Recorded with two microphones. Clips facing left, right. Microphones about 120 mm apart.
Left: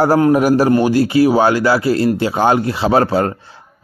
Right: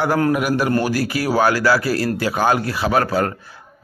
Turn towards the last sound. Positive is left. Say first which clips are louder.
# left 4 dB
turn(degrees=25)  # may be behind; listen again after turning